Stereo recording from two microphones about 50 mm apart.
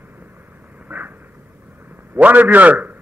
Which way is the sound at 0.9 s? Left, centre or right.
Right.